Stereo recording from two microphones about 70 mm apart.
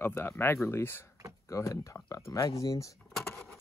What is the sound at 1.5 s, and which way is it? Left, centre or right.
Speech, left.